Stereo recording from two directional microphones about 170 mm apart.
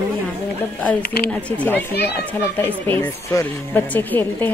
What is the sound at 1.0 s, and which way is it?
Speech, 65° left (ahead or behind).